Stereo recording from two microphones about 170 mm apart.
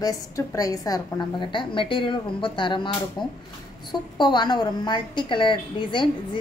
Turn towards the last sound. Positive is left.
turn(degrees=30)  # may be behind; listen again after turning